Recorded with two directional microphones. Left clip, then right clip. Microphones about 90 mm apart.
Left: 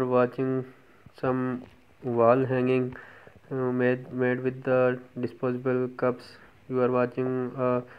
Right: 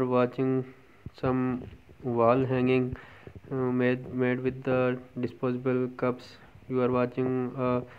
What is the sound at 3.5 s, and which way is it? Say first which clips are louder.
Speech: left 1 dB; 15° left (ahead or behind).